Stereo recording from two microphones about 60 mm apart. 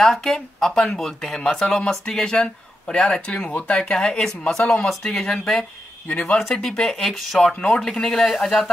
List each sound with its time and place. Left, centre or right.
0.0 s speech: centre
6.0 s speech: left
6.5 s speech: centre